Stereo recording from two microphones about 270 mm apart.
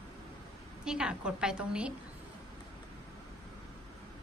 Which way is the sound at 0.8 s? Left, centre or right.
Centre.